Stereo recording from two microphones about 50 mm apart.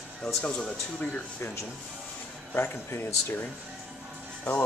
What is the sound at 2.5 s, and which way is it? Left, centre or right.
Speech, left.